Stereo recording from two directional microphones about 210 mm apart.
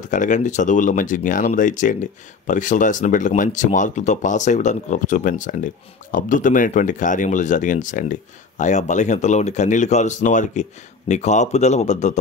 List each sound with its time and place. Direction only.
0.1 s speech: 35° left (ahead or behind)